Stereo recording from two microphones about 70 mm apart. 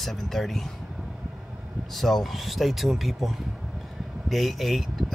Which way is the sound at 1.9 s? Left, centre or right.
Centre.